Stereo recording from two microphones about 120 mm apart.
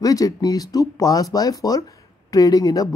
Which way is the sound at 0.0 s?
30° left (ahead or behind).